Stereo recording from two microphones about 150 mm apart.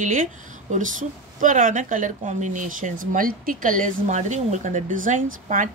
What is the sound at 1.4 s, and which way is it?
Speech, 60° right (ahead or behind).